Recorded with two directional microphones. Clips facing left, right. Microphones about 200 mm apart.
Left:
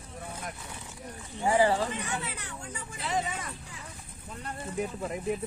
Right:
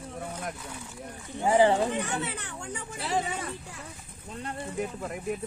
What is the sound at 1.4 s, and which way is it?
Speech, 20° right (ahead or behind).